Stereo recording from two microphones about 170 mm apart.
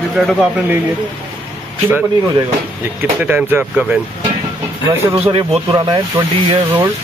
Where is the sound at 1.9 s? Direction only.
15° right (ahead or behind).